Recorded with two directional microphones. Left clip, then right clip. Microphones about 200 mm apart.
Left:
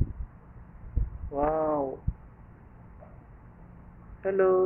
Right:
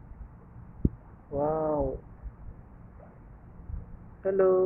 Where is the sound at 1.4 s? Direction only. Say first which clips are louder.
Left 1 dB; 5° left (ahead or behind).